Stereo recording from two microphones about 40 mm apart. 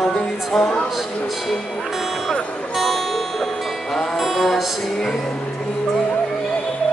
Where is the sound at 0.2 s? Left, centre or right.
Centre.